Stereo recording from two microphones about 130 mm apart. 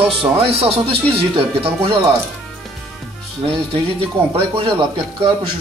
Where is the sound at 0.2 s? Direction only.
50° right (ahead or behind).